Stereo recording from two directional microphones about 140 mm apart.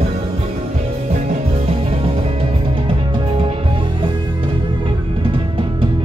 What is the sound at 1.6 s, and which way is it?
Music, 45° right (ahead or behind).